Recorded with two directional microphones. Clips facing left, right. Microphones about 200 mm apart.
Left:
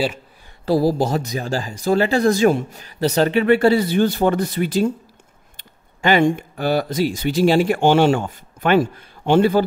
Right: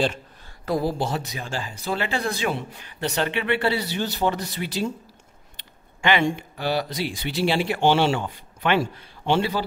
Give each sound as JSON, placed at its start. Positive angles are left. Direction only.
{"t": 0.7, "sound": "speech", "side_deg": 35}